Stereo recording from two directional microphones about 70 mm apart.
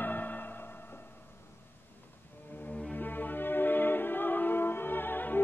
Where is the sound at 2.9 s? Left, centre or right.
Left.